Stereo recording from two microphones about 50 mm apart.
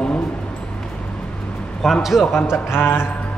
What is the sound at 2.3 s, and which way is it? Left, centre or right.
Speech, left.